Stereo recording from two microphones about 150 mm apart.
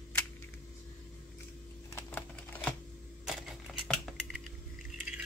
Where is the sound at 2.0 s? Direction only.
10° left (ahead or behind).